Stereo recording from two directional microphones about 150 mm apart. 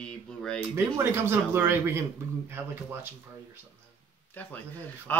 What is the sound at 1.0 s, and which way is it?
Speech, 15° right (ahead or behind).